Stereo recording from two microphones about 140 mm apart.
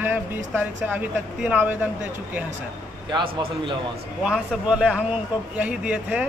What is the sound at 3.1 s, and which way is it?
Speech, 40° right (ahead or behind).